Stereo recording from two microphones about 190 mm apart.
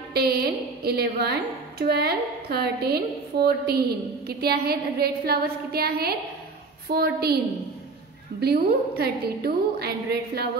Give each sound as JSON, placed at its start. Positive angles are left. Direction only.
{"t": 0.1, "sound": "a woman's voice", "side_deg": -55}
{"t": 8.4, "sound": "a woman's voice", "side_deg": -55}